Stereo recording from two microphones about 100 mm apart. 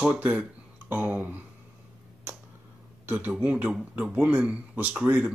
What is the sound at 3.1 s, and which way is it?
Speech, 15° right (ahead or behind).